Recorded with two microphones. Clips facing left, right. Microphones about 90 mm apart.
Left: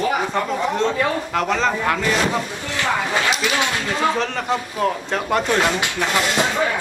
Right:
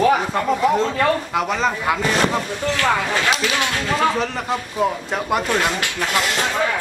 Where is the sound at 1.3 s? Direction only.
5° right (ahead or behind).